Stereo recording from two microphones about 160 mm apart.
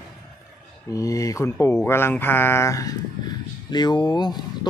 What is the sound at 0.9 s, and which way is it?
Speech, 20° left (ahead or behind).